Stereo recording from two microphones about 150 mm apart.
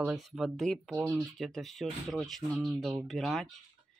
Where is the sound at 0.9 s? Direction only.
10° right (ahead or behind).